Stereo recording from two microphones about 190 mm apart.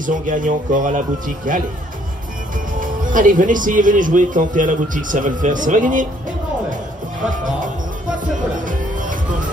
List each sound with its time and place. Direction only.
0.0 s speech: 45° right (ahead or behind)
2.8 s speech: 45° right (ahead or behind)
8.5 s music: 45° right (ahead or behind)